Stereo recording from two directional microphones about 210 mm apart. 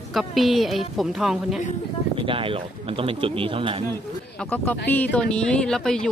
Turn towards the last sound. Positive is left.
turn(degrees=5)  # may be behind; listen again after turning